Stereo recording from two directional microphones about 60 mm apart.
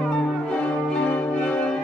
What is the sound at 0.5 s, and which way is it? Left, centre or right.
Change ringing, centre.